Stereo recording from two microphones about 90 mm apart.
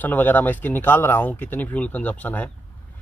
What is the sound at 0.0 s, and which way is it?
Speech, 20° left (ahead or behind).